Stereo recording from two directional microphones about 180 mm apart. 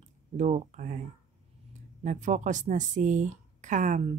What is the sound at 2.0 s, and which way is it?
Speech, 45° right (ahead or behind).